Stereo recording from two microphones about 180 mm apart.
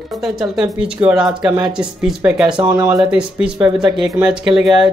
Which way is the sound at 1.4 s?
15° right (ahead or behind).